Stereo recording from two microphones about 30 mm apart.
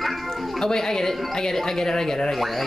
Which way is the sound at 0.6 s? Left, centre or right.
Centre.